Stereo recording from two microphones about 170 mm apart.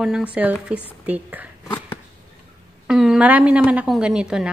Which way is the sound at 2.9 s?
5° right (ahead or behind).